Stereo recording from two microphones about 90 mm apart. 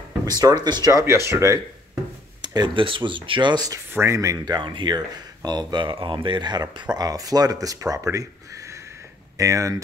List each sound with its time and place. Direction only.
0.2 s speech: 45° right (ahead or behind)
0.9 s speech: 30° right (ahead or behind)
2.4 s speech: 50° right (ahead or behind)
3.9 s speech: 30° right (ahead or behind)
4.6 s speech: 60° right (ahead or behind); by 9.8 s 40° right (ahead or behind)